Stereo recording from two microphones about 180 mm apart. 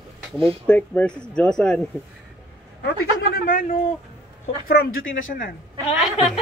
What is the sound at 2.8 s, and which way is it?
Speech, 55° left (ahead or behind).